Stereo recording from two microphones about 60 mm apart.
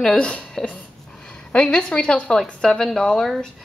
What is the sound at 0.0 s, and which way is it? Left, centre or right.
Speech, centre.